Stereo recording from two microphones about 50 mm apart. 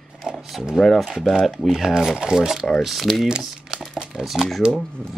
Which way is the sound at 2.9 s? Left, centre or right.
Centre.